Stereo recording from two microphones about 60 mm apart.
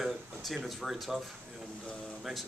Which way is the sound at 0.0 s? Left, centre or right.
Centre.